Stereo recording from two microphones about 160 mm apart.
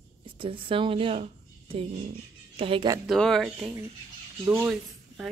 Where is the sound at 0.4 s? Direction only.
35° right (ahead or behind).